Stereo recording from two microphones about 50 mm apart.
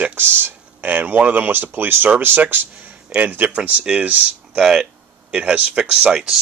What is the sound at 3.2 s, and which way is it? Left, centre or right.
Speech, right.